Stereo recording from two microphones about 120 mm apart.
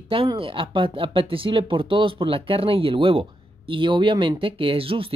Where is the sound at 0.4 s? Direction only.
45° right (ahead or behind).